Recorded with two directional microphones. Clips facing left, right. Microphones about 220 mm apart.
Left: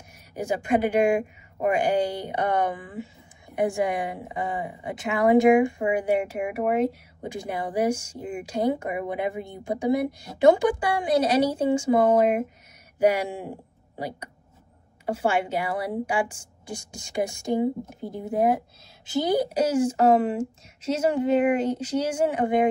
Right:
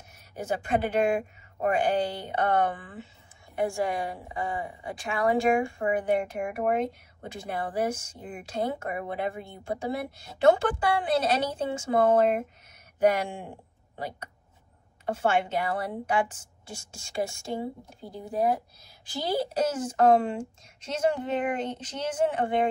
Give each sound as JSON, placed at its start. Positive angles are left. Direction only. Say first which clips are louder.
{"t": 0.1, "sound": "speech", "louder": "left 3 dB", "side_deg": 10}